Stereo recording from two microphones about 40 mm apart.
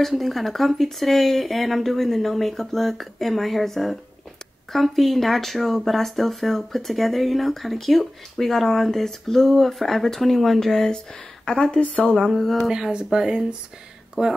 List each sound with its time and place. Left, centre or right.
0.0 s speech: centre
11.4 s a woman's voice: left
12.1 s a sound: centre
12.5 s speech: centre